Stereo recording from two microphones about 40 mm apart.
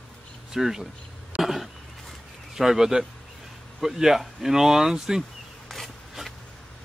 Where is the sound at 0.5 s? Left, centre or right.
Centre.